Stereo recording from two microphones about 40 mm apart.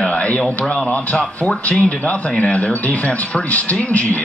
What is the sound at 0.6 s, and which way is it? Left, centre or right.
Speech, left.